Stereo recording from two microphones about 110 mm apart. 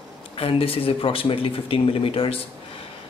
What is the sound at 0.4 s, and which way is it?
Speech, 55° left (ahead or behind).